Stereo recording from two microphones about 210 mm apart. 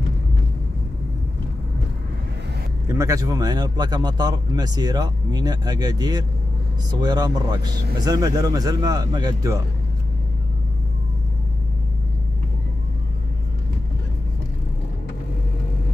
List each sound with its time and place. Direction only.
2.9 s speech: 15° right (ahead or behind)